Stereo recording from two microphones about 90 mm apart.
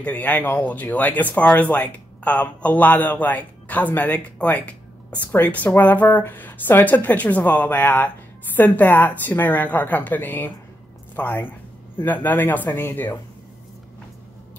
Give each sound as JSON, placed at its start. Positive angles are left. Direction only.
{"t": 0.0, "sound": "speech", "side_deg": 20}